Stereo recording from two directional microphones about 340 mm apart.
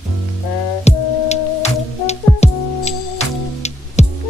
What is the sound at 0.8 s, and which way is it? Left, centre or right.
Music, centre.